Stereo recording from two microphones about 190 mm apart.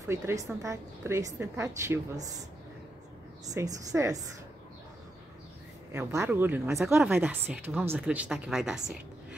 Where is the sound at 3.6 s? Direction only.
15° right (ahead or behind).